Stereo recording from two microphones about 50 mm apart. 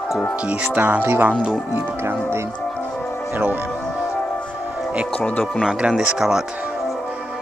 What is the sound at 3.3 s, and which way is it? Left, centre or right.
Speech, right.